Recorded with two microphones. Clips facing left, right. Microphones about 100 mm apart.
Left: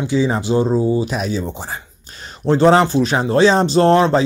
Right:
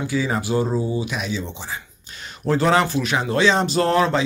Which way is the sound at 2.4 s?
30° left (ahead or behind).